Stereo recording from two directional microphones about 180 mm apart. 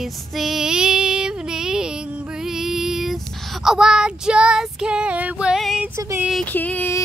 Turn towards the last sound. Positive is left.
turn(degrees=10)  # may be behind; listen again after turning